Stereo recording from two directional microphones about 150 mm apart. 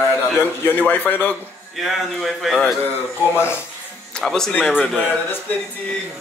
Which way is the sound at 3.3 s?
15° left (ahead or behind).